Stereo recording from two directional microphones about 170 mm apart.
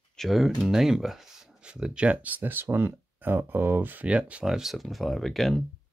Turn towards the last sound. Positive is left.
turn(degrees=0)  # may be behind; listen again after turning